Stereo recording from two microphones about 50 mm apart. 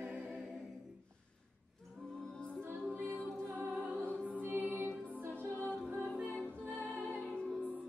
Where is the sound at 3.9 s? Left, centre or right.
Right.